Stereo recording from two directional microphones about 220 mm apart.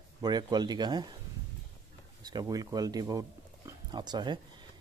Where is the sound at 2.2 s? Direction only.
15° right (ahead or behind).